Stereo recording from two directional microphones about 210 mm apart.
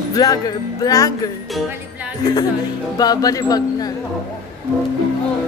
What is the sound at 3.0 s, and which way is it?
Speech, 20° left (ahead or behind).